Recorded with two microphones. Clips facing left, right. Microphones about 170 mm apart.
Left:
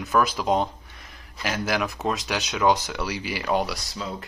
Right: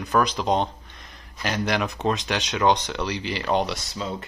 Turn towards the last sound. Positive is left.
turn(degrees=0)  # may be behind; listen again after turning